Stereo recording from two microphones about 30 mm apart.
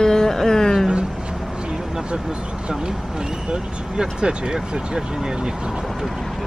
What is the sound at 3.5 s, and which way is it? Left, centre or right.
Speech, right.